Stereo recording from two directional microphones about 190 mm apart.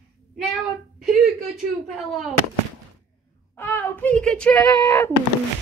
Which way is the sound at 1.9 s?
Centre (ahead or behind).